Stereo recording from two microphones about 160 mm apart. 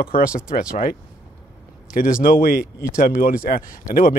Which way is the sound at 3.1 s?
60° left (ahead or behind).